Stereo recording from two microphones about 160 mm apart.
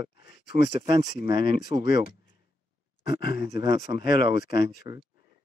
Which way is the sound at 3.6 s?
90° left.